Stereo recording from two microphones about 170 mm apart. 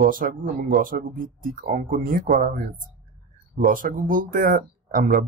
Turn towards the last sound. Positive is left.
turn(degrees=-55)  # may be behind; listen again after turning